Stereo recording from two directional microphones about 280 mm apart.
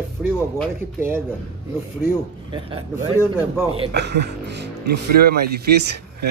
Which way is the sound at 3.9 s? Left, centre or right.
Right.